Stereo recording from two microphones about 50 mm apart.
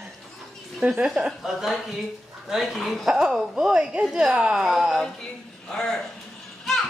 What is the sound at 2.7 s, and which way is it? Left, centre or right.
Speech, centre.